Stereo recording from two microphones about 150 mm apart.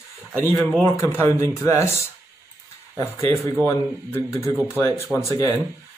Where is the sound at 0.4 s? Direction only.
15° left (ahead or behind).